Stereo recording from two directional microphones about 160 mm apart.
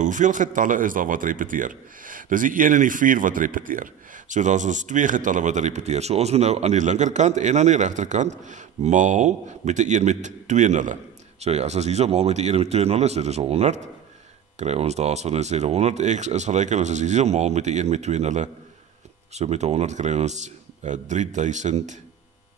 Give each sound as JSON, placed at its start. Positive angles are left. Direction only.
{"t": 0.0, "sound": "speech", "side_deg": -50}